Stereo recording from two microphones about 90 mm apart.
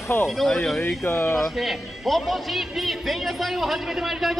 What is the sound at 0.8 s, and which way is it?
Speech, 25° left (ahead or behind).